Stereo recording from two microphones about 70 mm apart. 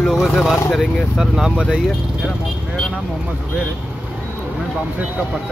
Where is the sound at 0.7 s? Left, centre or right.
Centre.